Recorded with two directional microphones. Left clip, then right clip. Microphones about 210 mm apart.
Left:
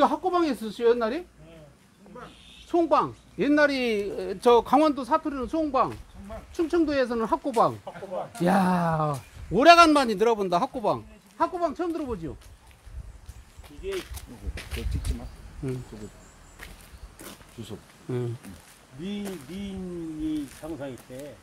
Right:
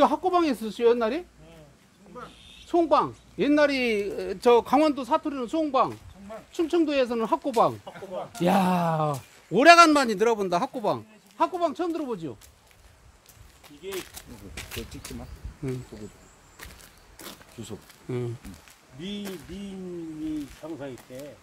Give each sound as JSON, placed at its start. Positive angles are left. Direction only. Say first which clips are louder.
{"t": 0.0, "sound": "speech", "louder": "right 1 dB", "side_deg": -30}
{"t": 2.1, "sound": "a sound", "louder": "right 2 dB", "side_deg": -50}
{"t": 2.7, "sound": "a man's voice", "louder": "right 1 dB", "side_deg": -10}
{"t": 7.8, "sound": "speech", "louder": "left 2 dB", "side_deg": -40}
{"t": 8.4, "sound": "a man's voice", "louder": "right 1 dB", "side_deg": -10}
{"t": 14.5, "sound": "speech", "louder": "even", "side_deg": -50}
{"t": 17.2, "sound": "a sound", "louder": "right 1 dB", "side_deg": -15}
{"t": 18.1, "sound": "speech", "louder": "even", "side_deg": -5}
{"t": 20.6, "sound": "speech", "louder": "left 1 dB", "side_deg": 10}
{"t": 21.1, "sound": "speech", "louder": "even", "side_deg": 30}